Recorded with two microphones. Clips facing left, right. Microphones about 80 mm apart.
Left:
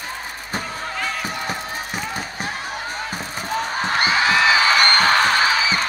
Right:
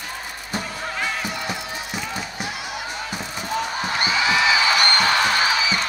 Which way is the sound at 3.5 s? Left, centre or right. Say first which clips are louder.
Left 3 dB; left.